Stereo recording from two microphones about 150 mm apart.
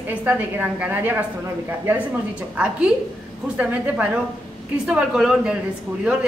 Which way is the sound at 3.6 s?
10° right (ahead or behind).